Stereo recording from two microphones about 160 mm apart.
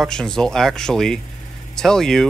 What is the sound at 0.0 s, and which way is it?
Speech, 5° left (ahead or behind).